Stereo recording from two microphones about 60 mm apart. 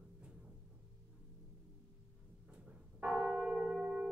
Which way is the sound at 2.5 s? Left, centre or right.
Centre.